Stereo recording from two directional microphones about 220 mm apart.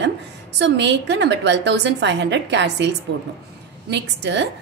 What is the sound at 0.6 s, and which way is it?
A woman's voice, 55° right (ahead or behind).